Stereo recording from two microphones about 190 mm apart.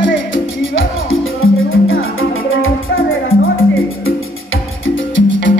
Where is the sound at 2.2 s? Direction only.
90° left.